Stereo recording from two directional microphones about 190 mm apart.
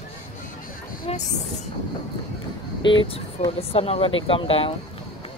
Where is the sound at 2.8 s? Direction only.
25° left (ahead or behind).